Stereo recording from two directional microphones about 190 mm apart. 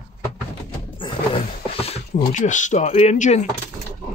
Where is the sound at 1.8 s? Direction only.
40° left (ahead or behind).